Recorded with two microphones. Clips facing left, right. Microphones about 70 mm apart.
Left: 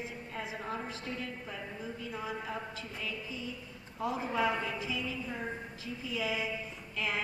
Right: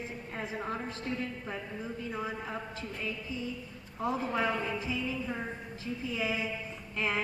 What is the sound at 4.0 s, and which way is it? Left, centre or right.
A woman's voice, right.